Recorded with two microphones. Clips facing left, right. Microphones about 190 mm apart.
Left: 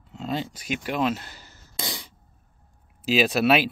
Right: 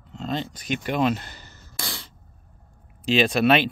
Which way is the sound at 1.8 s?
15° left (ahead or behind).